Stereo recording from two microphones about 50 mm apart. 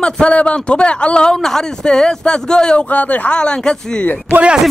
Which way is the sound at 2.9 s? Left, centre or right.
Left.